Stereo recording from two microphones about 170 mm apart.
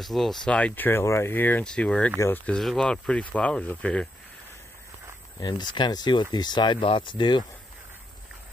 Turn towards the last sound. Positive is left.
turn(degrees=25)  # may be behind; listen again after turning